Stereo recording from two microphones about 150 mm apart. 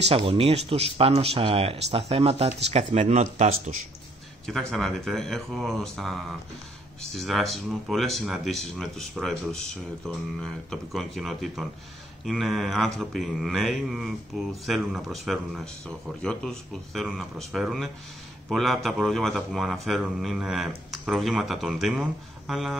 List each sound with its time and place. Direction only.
0.0 s speech: 40° right (ahead or behind)
4.5 s speech: centre (ahead or behind)